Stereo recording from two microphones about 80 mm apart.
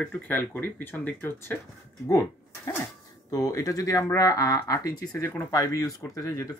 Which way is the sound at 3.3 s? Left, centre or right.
Left.